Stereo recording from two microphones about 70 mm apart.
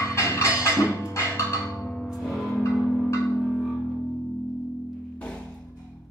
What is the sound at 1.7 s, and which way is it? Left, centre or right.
Music, centre.